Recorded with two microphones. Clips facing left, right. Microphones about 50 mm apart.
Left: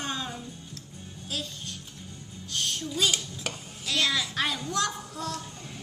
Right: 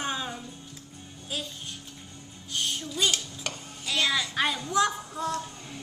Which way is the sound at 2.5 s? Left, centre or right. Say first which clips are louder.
Even; centre.